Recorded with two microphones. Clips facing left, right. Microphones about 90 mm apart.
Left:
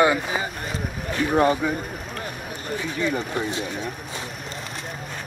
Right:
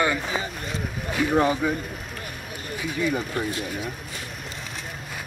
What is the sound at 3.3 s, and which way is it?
Speech, 25° left (ahead or behind).